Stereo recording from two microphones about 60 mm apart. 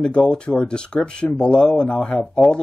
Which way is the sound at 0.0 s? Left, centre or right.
Centre.